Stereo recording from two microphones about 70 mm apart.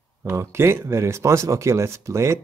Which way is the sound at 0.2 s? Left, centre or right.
Right.